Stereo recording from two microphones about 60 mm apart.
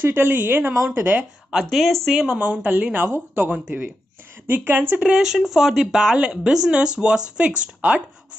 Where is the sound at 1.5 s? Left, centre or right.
Centre.